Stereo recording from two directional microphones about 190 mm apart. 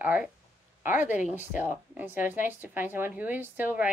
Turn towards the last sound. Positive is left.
turn(degrees=-10)  # may be behind; listen again after turning